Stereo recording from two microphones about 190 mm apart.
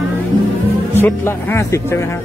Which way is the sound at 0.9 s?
10° left (ahead or behind).